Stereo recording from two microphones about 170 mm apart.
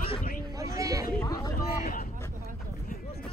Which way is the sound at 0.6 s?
20° right (ahead or behind).